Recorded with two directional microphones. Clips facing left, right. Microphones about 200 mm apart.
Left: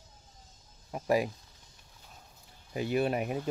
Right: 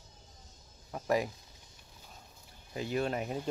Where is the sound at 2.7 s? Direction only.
15° left (ahead or behind).